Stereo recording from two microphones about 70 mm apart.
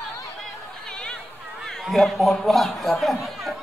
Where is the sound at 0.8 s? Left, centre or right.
Centre.